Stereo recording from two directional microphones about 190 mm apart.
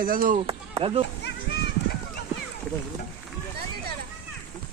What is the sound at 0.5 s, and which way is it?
Speech, 30° right (ahead or behind).